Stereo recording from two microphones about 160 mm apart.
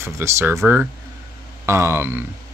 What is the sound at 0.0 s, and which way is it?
Speech, 15° right (ahead or behind).